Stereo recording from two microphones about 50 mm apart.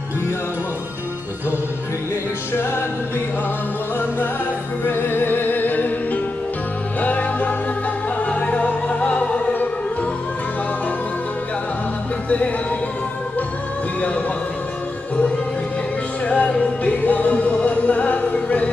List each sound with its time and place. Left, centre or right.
4.8 s music: left
7.0 s music: left
16.3 s music: left